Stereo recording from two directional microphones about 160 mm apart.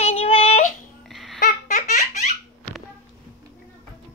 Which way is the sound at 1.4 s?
50° left (ahead or behind).